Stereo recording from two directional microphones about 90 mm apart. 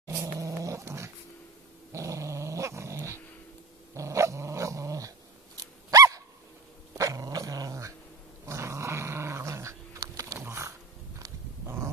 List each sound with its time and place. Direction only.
0.0 s cat: 30° right (ahead or behind)
1.9 s dog: 35° right (ahead or behind)
10.4 s a sound: 30° right (ahead or behind)
11.1 s wild animals: 35° right (ahead or behind)